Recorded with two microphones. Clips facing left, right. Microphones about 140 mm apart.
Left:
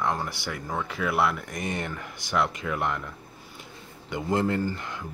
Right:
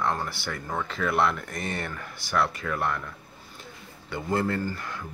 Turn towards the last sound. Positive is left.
turn(degrees=20)  # may be behind; listen again after turning